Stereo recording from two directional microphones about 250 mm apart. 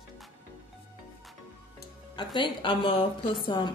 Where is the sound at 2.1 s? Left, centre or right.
Centre.